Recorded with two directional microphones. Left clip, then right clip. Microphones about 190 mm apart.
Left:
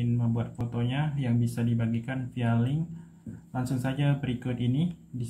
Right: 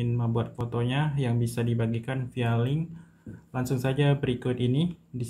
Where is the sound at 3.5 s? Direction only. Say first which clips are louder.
Right 3 dB; 35° right (ahead or behind).